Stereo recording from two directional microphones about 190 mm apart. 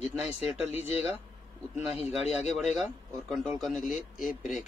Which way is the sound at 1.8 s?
10° right (ahead or behind).